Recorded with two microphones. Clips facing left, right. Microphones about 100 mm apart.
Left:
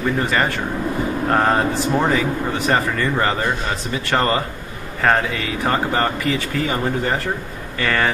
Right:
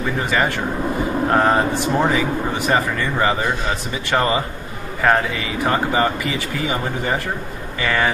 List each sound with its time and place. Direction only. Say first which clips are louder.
0.2 s speech: even; 5° right (ahead or behind)